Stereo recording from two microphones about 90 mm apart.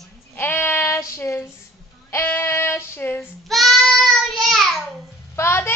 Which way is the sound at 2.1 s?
25° left (ahead or behind).